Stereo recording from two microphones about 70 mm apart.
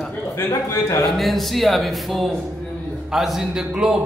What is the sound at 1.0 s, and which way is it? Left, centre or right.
Mantra, centre.